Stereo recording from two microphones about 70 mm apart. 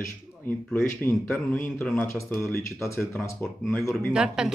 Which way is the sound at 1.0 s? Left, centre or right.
Left.